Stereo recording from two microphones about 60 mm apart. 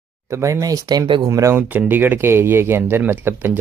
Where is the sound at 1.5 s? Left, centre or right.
Right.